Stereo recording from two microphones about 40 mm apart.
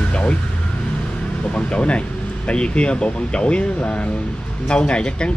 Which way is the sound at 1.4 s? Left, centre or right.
Left.